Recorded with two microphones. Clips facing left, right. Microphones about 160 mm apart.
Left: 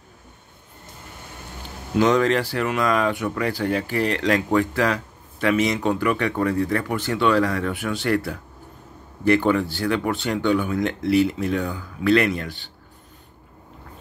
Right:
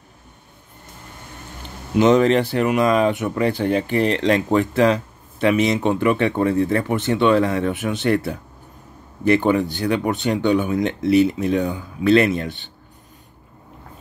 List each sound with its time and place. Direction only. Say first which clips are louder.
2.0 s speech: right 4 dB; 20° right (ahead or behind)